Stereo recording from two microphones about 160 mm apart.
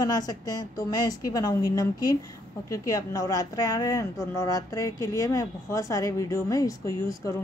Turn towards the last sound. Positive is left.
turn(degrees=20)  # may be behind; listen again after turning